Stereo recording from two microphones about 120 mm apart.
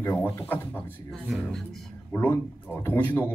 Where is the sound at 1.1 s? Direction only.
5° left (ahead or behind).